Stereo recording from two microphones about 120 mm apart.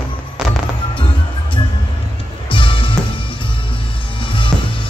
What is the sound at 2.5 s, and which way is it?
Music, 45° left (ahead or behind).